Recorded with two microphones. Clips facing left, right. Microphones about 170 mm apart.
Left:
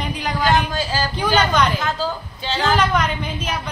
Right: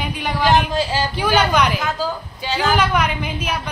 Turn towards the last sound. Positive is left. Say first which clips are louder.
# right 1 dB
turn(degrees=-10)  # may be behind; listen again after turning